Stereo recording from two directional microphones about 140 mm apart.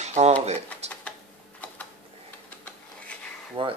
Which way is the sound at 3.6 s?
40° right (ahead or behind).